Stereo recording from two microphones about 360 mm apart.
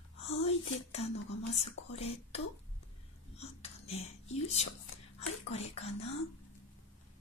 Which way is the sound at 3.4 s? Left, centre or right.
Centre.